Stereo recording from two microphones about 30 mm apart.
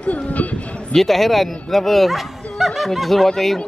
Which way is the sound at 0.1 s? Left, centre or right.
Left.